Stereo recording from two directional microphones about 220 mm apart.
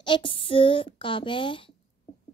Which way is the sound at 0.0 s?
20° left (ahead or behind).